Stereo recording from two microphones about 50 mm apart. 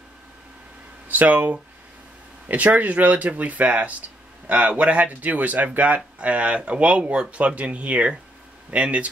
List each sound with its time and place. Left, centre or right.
1.0 s speech: right